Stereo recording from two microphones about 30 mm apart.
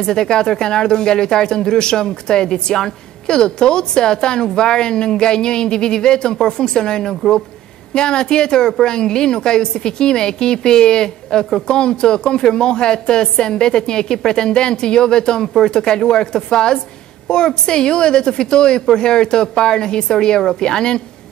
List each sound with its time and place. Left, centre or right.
0.0 s a woman's voice: left
15.4 s speech: centre
15.9 s a woman's voice: left